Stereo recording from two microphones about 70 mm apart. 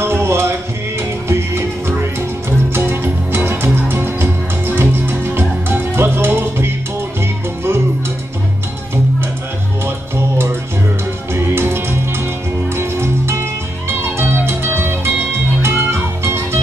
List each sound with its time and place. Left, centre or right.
0.0 s music: right
9.8 s music: right